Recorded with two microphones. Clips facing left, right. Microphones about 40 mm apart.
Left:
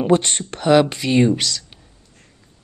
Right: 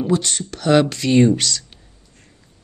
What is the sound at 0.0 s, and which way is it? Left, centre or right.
Speech, left.